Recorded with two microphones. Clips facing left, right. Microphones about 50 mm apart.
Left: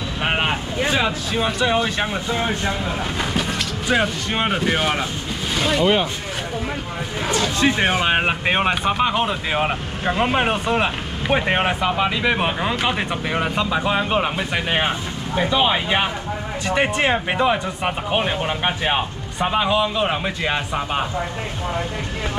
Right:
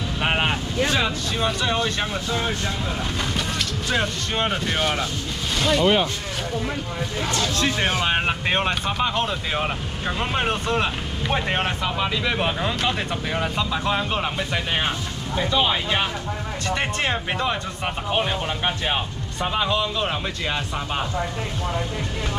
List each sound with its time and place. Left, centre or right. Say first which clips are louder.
0.2 s speech: left 1 dB; centre
7.2 s speech: left 5 dB; centre